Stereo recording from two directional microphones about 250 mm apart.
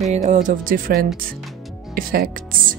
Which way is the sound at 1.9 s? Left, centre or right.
Right.